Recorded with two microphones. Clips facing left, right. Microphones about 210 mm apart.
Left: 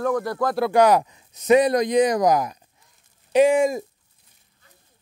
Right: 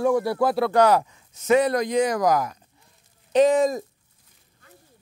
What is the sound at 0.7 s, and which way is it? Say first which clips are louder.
Speech: left 5 dB; 15° left (ahead or behind).